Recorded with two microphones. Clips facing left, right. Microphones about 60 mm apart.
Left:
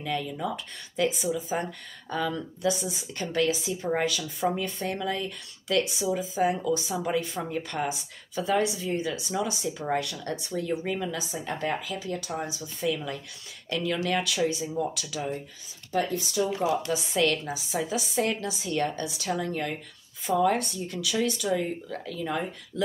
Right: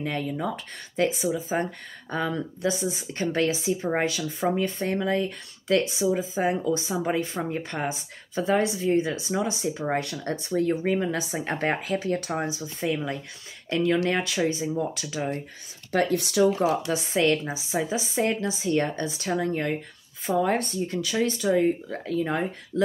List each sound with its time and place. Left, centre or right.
0.0 s speech: right
15.1 s speech: right
16.5 s speech: right
17.1 s speech: right